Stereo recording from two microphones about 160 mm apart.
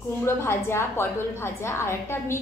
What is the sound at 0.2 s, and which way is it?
A woman's voice, 15° left (ahead or behind).